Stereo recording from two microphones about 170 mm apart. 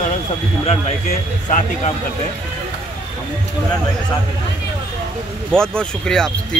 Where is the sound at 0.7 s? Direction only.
40° left (ahead or behind).